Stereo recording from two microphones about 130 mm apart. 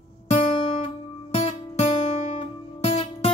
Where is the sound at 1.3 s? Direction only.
55° left (ahead or behind).